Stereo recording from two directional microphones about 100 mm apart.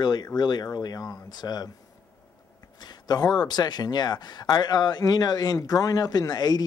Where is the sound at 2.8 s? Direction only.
45° left (ahead or behind).